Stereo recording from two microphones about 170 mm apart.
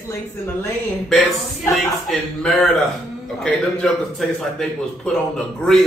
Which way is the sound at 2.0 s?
Centre (ahead or behind).